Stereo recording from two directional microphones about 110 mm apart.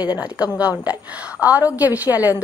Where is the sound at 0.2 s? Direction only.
10° right (ahead or behind).